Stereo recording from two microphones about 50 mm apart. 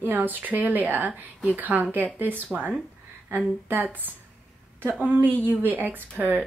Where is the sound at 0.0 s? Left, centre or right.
Right.